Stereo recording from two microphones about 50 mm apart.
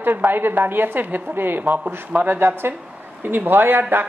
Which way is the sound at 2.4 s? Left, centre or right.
Right.